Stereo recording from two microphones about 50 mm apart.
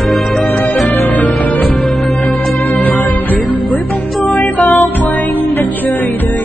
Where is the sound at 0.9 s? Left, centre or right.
Left.